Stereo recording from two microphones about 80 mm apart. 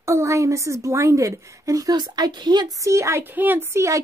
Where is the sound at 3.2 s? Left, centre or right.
Right.